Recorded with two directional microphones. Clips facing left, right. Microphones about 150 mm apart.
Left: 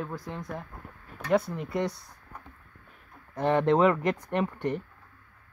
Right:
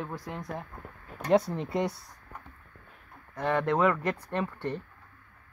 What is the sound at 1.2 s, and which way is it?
Speech, 35° right (ahead or behind).